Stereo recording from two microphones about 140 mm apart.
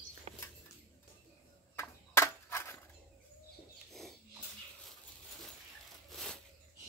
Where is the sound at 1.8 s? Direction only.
20° left (ahead or behind).